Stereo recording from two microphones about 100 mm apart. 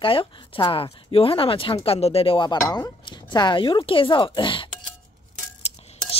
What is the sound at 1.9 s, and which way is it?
Speech, 85° left.